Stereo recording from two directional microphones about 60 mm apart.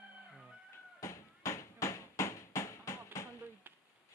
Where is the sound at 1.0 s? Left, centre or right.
Left.